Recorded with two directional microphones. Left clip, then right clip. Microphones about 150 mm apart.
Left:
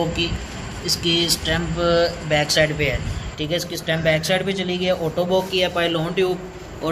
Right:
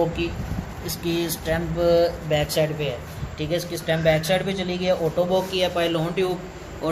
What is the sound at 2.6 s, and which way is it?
A man's voice, 5° left (ahead or behind).